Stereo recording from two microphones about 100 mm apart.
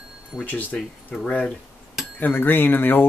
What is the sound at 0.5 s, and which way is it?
Speech, 15° left (ahead or behind).